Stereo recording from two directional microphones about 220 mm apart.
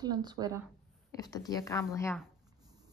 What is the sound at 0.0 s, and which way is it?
Speech, 20° right (ahead or behind).